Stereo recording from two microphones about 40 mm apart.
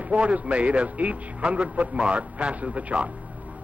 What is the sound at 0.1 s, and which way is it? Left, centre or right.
A man's voice, right.